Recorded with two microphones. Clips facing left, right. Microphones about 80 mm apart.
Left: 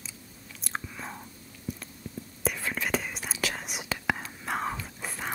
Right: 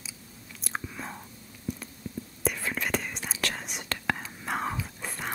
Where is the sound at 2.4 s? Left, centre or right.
Centre.